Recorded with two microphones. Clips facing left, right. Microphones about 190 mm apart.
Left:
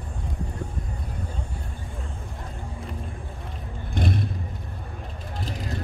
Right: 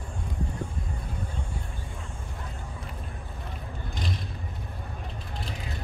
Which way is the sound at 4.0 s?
55° left (ahead or behind).